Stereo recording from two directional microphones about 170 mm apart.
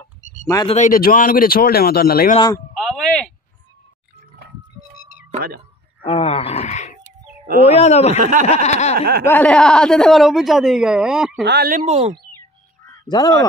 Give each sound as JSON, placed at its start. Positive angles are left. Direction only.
{"t": 0.7, "sound": "speech", "side_deg": 45}
{"t": 2.3, "sound": "speech", "side_deg": 25}
{"t": 2.7, "sound": "a sound", "side_deg": 0}
{"t": 6.0, "sound": "speech", "side_deg": 35}
{"t": 8.2, "sound": "speech", "side_deg": -50}
{"t": 8.6, "sound": "speech", "side_deg": 40}
{"t": 9.2, "sound": "a man's voice", "side_deg": 10}
{"t": 11.4, "sound": "speech", "side_deg": -75}
{"t": 11.7, "sound": "speech", "side_deg": -40}
{"t": 13.1, "sound": "speech", "side_deg": 20}